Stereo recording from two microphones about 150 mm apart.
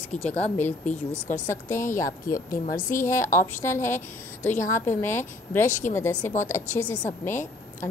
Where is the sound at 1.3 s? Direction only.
20° left (ahead or behind).